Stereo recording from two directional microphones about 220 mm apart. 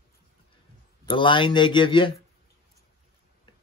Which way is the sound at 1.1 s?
20° left (ahead or behind).